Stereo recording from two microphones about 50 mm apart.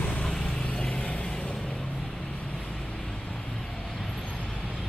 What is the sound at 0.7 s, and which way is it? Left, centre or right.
Vehicle, left.